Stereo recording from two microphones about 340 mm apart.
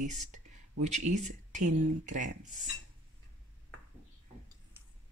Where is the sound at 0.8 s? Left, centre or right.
Right.